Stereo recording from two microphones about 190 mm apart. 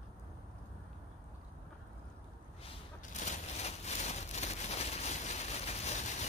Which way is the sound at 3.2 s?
35° left (ahead or behind).